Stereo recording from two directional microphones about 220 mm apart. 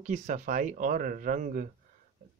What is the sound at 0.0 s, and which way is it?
Speech, 35° right (ahead or behind).